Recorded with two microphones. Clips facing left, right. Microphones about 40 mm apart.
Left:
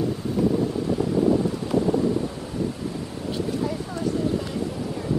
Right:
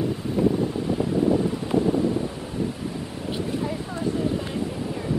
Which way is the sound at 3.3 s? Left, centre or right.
Right.